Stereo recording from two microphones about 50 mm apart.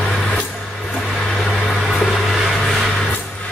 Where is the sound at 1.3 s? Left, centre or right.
Centre.